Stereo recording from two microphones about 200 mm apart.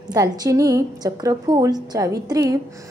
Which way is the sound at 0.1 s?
15° right (ahead or behind).